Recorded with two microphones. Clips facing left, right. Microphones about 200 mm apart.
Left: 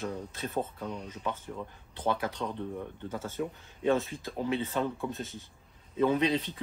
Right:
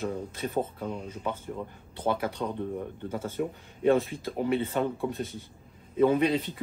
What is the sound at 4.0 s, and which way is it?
Speech, centre (ahead or behind).